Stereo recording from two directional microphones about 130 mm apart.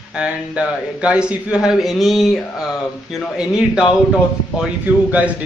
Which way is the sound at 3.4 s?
5° right (ahead or behind).